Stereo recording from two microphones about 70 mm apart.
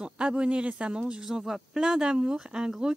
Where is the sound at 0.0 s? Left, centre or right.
Centre.